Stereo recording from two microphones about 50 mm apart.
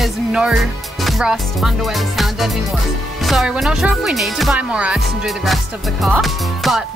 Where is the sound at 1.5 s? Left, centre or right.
Centre.